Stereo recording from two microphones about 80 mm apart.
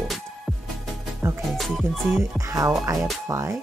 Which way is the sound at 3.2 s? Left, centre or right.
Right.